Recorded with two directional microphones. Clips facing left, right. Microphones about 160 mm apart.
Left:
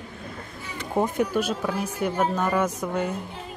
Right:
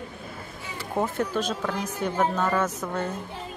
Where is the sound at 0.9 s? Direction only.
10° left (ahead or behind).